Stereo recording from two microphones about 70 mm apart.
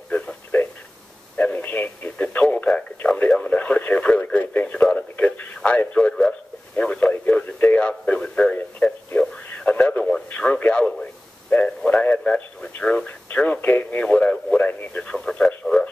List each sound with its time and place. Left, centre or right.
0.1 s a sound: left
1.3 s radio: left
2.5 s a man's voice: left
9.5 s radio: centre
10.3 s a man's voice: left
15.1 s speech: centre